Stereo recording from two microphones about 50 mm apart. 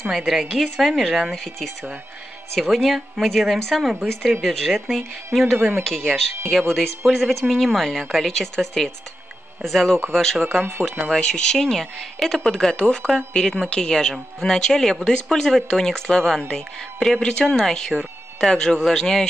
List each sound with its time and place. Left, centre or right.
0.1 s a woman's voice: centre
5.6 s speech: right
5.9 s a woman's voice: centre
10.6 s speech: right
11.1 s a woman's voice: centre